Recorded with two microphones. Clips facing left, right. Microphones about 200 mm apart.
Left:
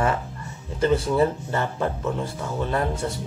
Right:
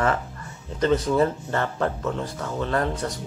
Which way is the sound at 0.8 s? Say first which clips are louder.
Even; 10° left (ahead or behind).